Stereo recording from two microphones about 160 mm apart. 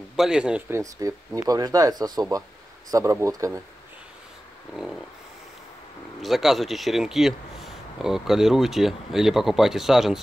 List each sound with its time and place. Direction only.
0.1 s speech: 5° right (ahead or behind); by 3.6 s 20° right (ahead or behind)
6.2 s speech: centre (ahead or behind)